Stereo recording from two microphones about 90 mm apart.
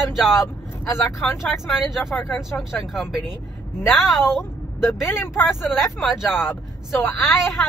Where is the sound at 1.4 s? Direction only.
Centre (ahead or behind).